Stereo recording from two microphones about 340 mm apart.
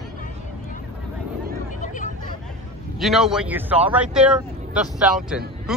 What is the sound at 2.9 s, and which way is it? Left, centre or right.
Speech, centre.